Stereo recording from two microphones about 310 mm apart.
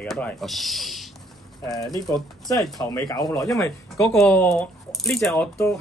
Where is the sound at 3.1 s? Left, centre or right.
Centre.